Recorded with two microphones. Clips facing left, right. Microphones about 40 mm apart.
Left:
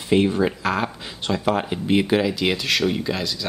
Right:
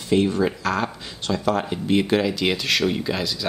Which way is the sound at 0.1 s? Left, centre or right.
Centre.